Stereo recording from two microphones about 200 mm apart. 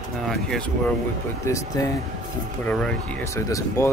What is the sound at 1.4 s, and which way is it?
Speech, 15° left (ahead or behind).